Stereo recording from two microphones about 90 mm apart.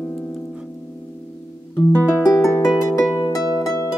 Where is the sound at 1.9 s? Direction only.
20° left (ahead or behind).